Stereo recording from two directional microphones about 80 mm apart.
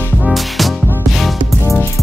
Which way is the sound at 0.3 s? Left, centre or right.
Centre.